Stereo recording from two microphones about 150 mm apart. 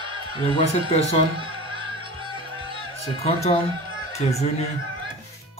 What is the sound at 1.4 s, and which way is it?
Music, 35° right (ahead or behind).